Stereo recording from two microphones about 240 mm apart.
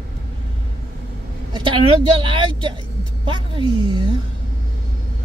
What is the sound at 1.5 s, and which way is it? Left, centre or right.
A woman's voice, right.